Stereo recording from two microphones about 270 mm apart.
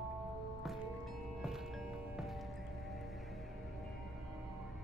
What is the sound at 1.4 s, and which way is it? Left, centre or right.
Music, centre.